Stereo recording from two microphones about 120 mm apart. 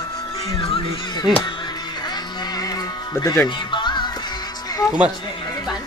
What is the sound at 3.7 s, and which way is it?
Music, 40° left (ahead or behind).